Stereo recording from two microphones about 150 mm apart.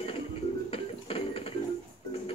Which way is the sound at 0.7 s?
40° left (ahead or behind).